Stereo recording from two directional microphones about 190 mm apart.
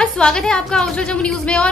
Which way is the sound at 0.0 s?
5° left (ahead or behind).